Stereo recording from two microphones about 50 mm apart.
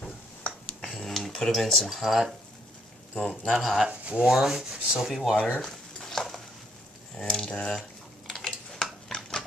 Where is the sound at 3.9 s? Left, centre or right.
Right.